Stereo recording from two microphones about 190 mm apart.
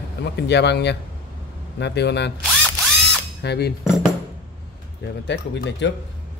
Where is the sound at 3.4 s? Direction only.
60° left (ahead or behind).